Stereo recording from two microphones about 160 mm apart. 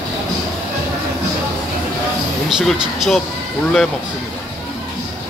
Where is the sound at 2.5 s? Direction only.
Centre (ahead or behind).